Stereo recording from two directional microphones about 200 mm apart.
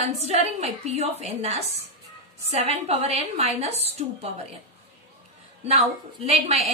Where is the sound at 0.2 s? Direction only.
35° right (ahead or behind).